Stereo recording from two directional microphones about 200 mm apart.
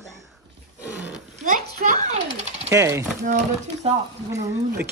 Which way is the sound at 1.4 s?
40° right (ahead or behind).